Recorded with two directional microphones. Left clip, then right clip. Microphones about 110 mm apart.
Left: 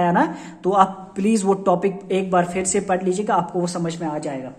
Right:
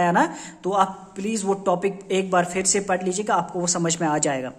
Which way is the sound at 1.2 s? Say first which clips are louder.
Left 5 dB; 15° left (ahead or behind).